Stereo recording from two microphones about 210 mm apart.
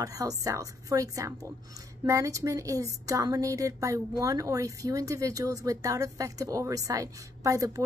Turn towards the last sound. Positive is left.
turn(degrees=-15)  # may be behind; listen again after turning